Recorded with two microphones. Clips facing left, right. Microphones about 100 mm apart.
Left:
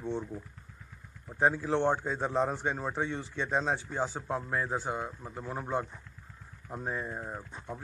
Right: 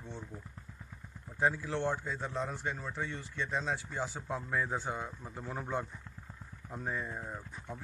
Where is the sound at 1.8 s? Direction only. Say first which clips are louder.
Left 6 dB; 40° left (ahead or behind).